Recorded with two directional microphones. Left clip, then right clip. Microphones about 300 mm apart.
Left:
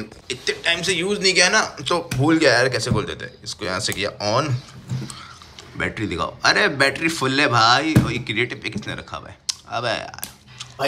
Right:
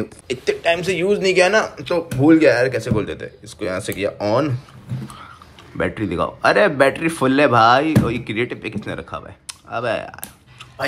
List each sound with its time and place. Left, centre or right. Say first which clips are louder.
0.3 s a man's voice: right 3 dB; centre
5.0 s vehicle: even; centre
5.8 s a man's voice: right 3 dB; centre